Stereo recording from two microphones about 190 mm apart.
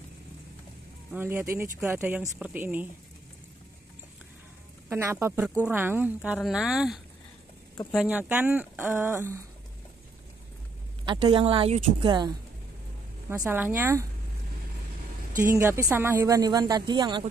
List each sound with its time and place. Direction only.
1.1 s speech: 10° right (ahead or behind)
4.8 s speech: 15° right (ahead or behind)
11.1 s speech: 25° right (ahead or behind)
13.3 s speech: 10° right (ahead or behind)
15.3 s speech: 15° right (ahead or behind)